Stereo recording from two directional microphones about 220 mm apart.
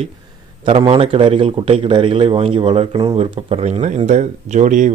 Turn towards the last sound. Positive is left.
turn(degrees=-35)  # may be behind; listen again after turning